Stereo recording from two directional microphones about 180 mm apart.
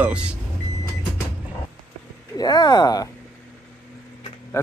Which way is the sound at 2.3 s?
20° left (ahead or behind).